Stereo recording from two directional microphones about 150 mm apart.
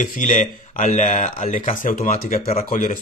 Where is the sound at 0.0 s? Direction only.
55° left (ahead or behind).